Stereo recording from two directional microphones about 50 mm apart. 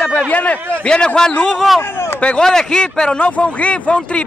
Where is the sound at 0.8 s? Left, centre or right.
Centre.